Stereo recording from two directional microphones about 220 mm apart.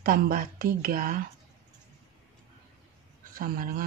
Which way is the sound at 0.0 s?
40° right (ahead or behind).